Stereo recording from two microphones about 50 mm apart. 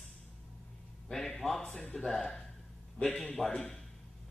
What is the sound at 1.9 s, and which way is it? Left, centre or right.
Speech, centre.